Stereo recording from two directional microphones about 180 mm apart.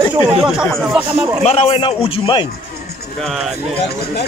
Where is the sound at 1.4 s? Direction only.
35° left (ahead or behind).